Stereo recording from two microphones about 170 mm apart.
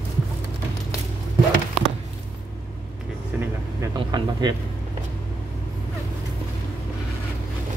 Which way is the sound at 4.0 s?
25° right (ahead or behind).